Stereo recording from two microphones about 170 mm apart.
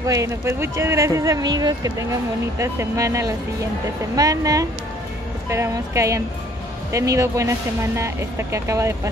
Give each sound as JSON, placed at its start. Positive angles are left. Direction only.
{"t": 0.0, "sound": "speech", "side_deg": -20}